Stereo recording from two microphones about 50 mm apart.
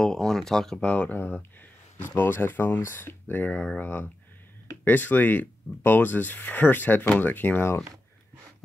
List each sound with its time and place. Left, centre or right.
0.0 s speech: centre
0.7 s speech: left
1.1 s speech: left